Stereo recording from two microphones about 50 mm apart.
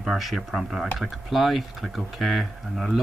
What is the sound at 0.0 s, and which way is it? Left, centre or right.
Speech, centre.